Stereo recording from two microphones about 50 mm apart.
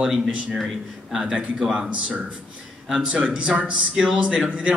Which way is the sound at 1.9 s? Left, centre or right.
Right.